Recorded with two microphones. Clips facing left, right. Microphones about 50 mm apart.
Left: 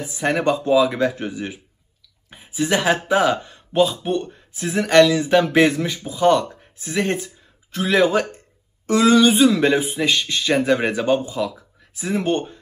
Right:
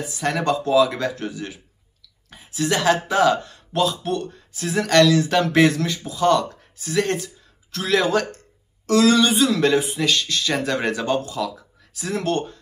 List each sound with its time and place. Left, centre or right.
0.0 s speech: left